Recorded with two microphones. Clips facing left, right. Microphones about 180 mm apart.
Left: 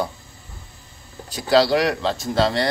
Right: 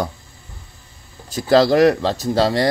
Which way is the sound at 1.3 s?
50° right (ahead or behind).